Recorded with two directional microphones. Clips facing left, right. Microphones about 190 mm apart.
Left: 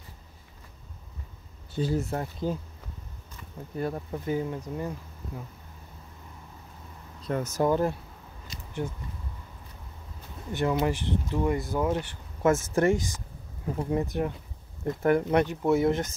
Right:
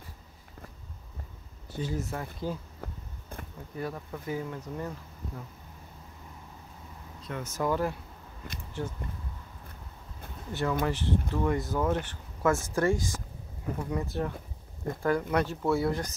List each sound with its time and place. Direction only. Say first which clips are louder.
1.8 s speech: left 5 dB; 30° left (ahead or behind)
2.8 s a sound: right 4 dB; 55° right (ahead or behind)
3.7 s speech: left 5 dB; 30° left (ahead or behind)
4.6 s speech: left 3 dB; 10° left (ahead or behind)
7.2 s speech: left 7 dB; 40° left (ahead or behind)
7.6 s speech: left 3 dB; 25° left (ahead or behind)
10.5 s speech: left 3 dB; 15° left (ahead or behind)